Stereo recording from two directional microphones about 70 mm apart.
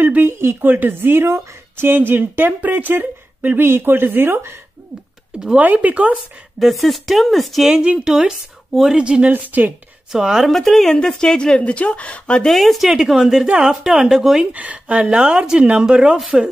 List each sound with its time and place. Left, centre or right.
0.0 s a woman's voice: right
5.6 s speech: right
6.6 s speech: centre
9.3 s speech: right
10.1 s a woman's voice: centre
12.5 s speech: centre
14.5 s speech: centre